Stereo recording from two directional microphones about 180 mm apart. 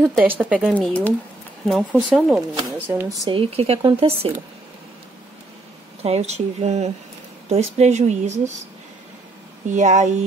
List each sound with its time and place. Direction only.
0.2 s speech: 10° right (ahead or behind)
0.6 s speech: 5° left (ahead or behind)
1.7 s speech: 5° right (ahead or behind)
2.5 s speech: 15° right (ahead or behind)
3.3 s speech: 30° right (ahead or behind)
6.0 s speech: 35° right (ahead or behind)
9.7 s speech: 40° right (ahead or behind)